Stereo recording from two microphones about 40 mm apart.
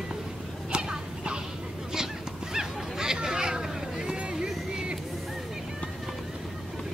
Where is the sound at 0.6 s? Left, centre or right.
Right.